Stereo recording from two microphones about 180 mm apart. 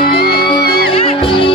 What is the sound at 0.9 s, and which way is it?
Music, 30° left (ahead or behind).